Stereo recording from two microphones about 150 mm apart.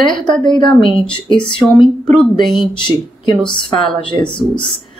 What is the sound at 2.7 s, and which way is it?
A woman's voice, 30° left (ahead or behind).